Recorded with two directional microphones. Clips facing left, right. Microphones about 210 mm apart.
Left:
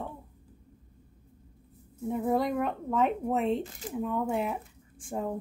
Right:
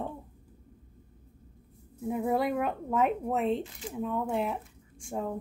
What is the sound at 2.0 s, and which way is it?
Speech, centre (ahead or behind).